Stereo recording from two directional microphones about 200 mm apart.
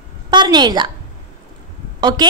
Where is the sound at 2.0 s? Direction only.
20° right (ahead or behind).